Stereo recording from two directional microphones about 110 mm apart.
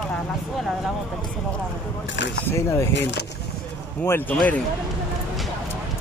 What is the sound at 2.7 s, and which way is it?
Speech, 25° left (ahead or behind).